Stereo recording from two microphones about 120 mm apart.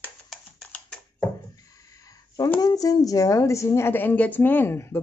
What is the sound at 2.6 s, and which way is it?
A woman's voice, 30° left (ahead or behind).